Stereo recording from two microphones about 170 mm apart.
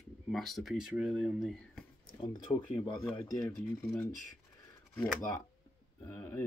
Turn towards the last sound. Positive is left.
turn(degrees=15)  # may be behind; listen again after turning